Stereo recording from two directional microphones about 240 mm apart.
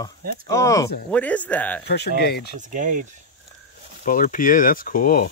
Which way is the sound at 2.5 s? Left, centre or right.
Right.